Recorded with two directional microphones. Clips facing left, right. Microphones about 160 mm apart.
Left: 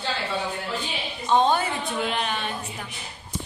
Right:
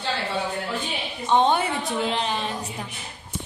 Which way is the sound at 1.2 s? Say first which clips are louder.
Right 1 dB; 20° right (ahead or behind).